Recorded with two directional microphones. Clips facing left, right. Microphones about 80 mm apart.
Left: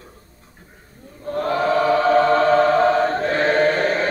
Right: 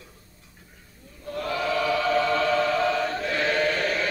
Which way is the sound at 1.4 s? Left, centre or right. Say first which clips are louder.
Left 7 dB; left.